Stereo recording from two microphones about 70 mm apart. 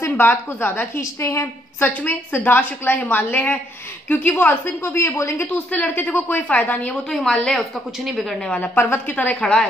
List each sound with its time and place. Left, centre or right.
0.0 s a woman's voice: left
1.2 s a woman's voice: left
1.8 s a woman's voice: left
5.4 s a woman's voice: left
7.1 s a woman's voice: centre
8.7 s a woman's voice: left; by 9.7 s centre